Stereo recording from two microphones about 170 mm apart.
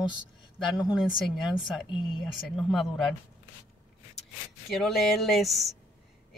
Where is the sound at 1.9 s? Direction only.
30° left (ahead or behind).